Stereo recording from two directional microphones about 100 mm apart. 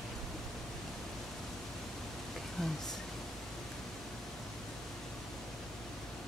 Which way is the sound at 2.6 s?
5° left (ahead or behind).